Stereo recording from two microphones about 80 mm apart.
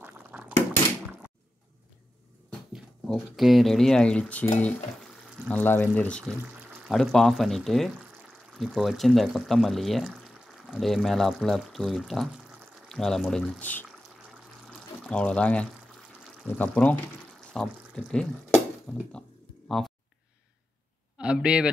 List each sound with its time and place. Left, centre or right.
0.0 s dishes: centre
2.7 s speech: centre
6.9 s speech: centre
13.6 s speech: left
14.7 s pour: centre
16.4 s speech: left
17.5 s speech: centre
21.2 s a man's voice: centre